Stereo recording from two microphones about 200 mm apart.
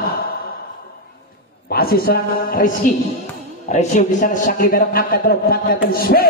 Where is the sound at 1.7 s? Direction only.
50° left (ahead or behind).